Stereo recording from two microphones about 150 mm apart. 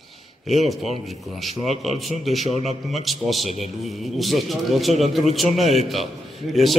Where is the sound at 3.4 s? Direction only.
50° left (ahead or behind).